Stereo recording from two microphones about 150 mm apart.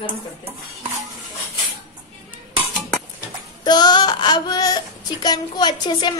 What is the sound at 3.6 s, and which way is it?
Speech, 30° left (ahead or behind).